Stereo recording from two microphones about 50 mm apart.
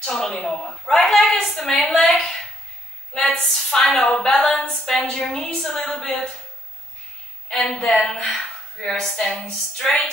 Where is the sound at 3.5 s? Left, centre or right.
Centre.